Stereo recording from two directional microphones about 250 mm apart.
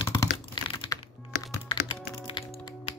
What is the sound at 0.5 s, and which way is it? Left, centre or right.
Computer keyboard, centre.